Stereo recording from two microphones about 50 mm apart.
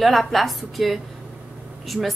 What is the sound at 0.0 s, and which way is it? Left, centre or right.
A woman's voice, centre.